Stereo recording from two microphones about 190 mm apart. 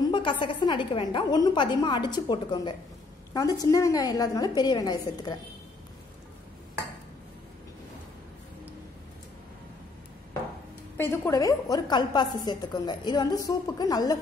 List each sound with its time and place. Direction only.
0.0 s a woman's voice: 25° left (ahead or behind)
11.0 s a woman's voice: 15° left (ahead or behind)